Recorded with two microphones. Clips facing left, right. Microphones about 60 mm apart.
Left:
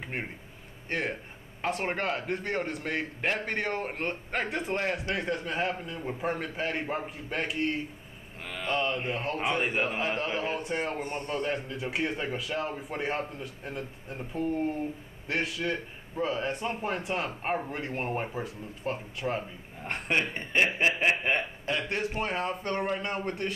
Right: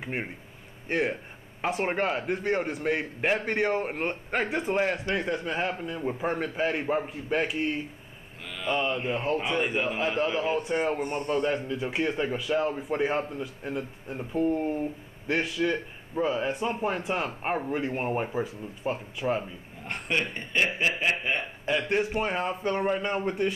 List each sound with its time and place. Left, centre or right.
0.0 s a man's voice: centre
11.4 s a man's voice: centre
19.9 s chuckle: left
21.6 s a man's voice: centre